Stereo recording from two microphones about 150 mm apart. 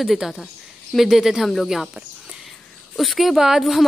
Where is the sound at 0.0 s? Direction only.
Centre (ahead or behind).